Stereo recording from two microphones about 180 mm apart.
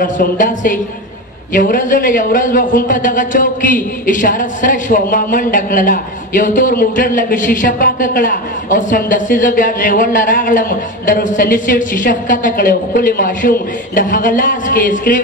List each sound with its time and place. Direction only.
0.0 s a man's voice: 45° left (ahead or behind)